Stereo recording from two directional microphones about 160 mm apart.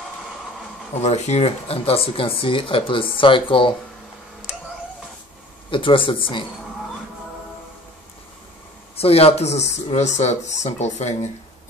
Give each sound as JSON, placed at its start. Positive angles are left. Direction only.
{"t": 1.0, "sound": "speech", "side_deg": 45}
{"t": 5.7, "sound": "speech", "side_deg": 35}
{"t": 8.9, "sound": "speech", "side_deg": 40}